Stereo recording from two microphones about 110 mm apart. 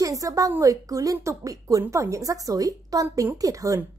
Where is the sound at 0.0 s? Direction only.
30° right (ahead or behind).